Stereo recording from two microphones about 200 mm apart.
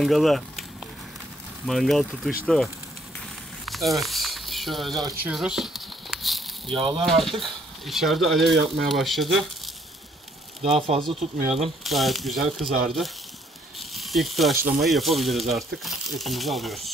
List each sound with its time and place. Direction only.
0.0 s speech: centre (ahead or behind)
1.7 s speech: centre (ahead or behind)
3.6 s a sound: centre (ahead or behind)
6.8 s speech: 25° right (ahead or behind)
7.1 s speech: centre (ahead or behind)
10.6 s speech: 30° right (ahead or behind)
11.8 s speech: centre (ahead or behind)
13.7 s snake: centre (ahead or behind)
14.8 s speech: centre (ahead or behind)